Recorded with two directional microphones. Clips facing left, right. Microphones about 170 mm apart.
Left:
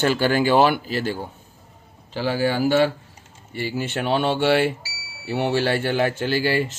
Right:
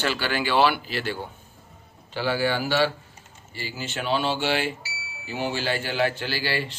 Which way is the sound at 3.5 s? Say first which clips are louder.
Left 7 dB; 55° left (ahead or behind).